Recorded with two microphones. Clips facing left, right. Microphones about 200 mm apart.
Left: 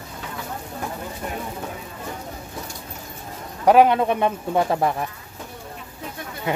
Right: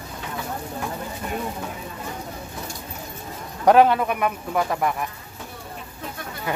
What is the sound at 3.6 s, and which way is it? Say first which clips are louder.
Speech: left 1 dB; 10° left (ahead or behind).